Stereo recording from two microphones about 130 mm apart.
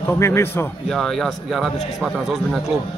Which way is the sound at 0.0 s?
20° left (ahead or behind).